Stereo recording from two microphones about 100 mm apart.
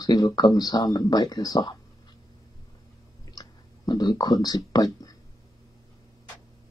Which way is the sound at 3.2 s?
40° left (ahead or behind).